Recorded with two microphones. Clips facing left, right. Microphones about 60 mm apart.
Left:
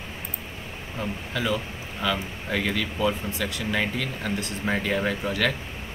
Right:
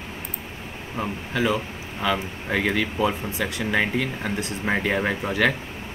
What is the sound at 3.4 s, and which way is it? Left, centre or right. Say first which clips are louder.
Speech: right 4 dB; centre.